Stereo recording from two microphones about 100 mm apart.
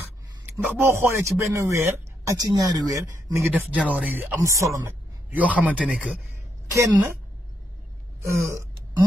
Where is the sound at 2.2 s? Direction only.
40° right (ahead or behind).